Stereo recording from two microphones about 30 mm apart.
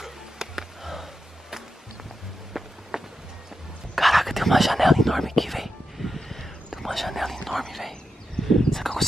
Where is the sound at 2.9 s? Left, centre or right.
Centre.